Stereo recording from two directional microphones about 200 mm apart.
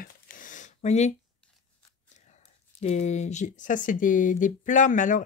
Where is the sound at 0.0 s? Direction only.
45° left (ahead or behind).